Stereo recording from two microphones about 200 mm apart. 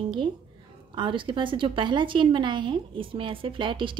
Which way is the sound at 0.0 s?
25° right (ahead or behind).